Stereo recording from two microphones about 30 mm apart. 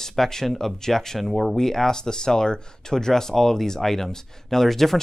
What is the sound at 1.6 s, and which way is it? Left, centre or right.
Speech, centre.